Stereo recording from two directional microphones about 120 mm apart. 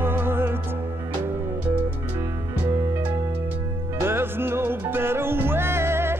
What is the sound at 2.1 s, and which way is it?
Music, 25° right (ahead or behind).